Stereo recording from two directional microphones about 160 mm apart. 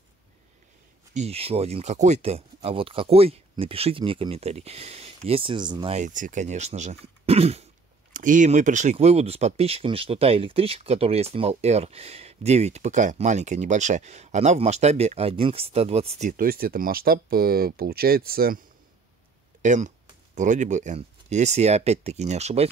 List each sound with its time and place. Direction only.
1.1 s speech: 40° right (ahead or behind)
5.9 s speech: 55° right (ahead or behind)
8.1 s speech: 55° right (ahead or behind)
8.9 s speech: 40° right (ahead or behind); by 18.6 s 70° right (ahead or behind)
19.6 s speech: 50° right (ahead or behind)